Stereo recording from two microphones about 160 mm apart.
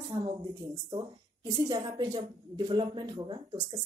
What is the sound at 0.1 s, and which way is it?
A woman's voice, 30° right (ahead or behind).